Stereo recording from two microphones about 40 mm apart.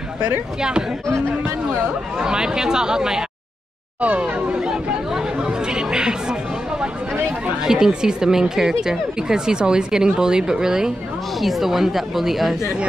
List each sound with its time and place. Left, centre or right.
0.6 s speech: centre
2.1 s speech: centre
4.0 s speech: right
4.6 s speech: centre
7.6 s speech: centre